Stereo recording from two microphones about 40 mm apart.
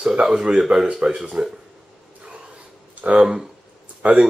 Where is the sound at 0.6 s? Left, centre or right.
Centre.